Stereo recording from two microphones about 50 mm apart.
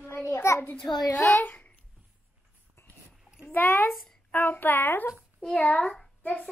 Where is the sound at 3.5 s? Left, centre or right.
Left.